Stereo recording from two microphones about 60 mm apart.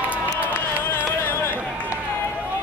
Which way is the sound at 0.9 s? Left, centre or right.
Left.